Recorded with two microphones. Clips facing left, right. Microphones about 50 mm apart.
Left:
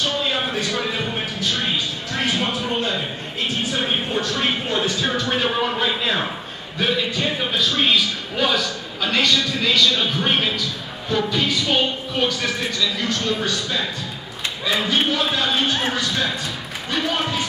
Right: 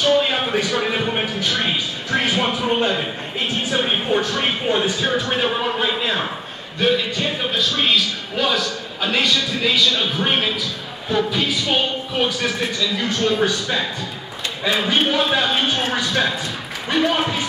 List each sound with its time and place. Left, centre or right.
0.2 s a sound: right
4.5 s a man's voice: centre
13.2 s speech: right
14.9 s speech: right